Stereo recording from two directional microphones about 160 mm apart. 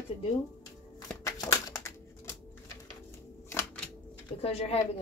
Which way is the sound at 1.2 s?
20° left (ahead or behind).